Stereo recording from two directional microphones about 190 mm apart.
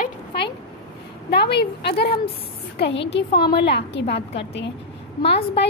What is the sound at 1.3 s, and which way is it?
Speech, 60° left (ahead or behind).